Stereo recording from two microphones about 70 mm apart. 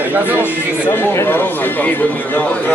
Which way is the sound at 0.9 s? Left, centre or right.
Left.